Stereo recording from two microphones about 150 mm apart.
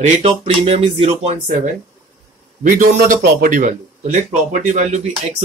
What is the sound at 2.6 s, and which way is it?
A man's voice, 60° right (ahead or behind).